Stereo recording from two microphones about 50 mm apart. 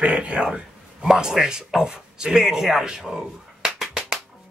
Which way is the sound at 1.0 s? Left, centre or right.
Centre.